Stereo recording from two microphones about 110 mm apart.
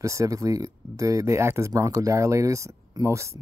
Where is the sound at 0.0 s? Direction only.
30° right (ahead or behind).